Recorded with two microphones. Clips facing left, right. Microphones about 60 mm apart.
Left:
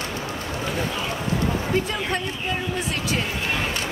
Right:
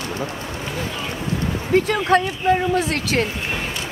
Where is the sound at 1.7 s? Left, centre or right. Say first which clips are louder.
Right 8 dB; right.